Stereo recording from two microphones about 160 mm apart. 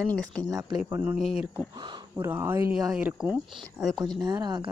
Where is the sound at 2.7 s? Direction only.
5° right (ahead or behind).